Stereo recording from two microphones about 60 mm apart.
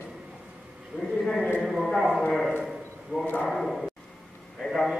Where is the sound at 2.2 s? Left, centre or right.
Centre.